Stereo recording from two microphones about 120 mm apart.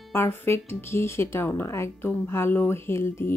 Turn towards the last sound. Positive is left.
turn(degrees=20)  # may be behind; listen again after turning